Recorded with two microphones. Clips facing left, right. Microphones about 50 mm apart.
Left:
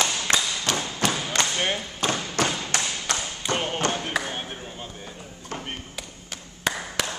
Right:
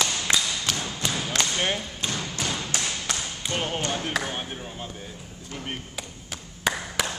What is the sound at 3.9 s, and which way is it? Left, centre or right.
Basketball bounce, centre.